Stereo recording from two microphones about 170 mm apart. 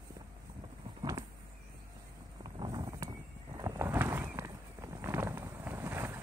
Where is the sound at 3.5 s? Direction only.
20° right (ahead or behind).